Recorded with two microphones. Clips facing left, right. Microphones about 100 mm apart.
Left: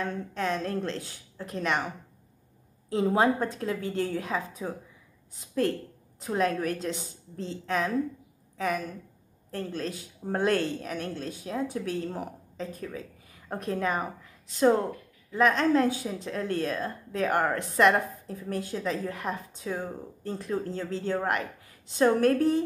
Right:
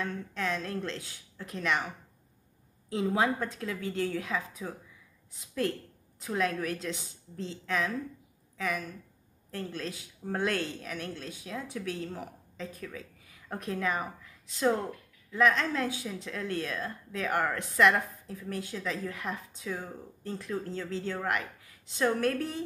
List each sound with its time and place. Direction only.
0.0 s speech: 35° left (ahead or behind)
2.9 s speech: 40° left (ahead or behind)
6.2 s a woman's voice: 35° left (ahead or behind)
15.3 s speech: 35° left (ahead or behind)